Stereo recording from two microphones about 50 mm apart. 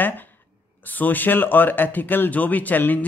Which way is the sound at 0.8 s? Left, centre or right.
Left.